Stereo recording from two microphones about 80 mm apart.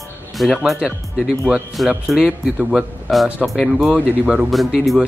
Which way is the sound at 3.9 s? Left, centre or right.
Centre.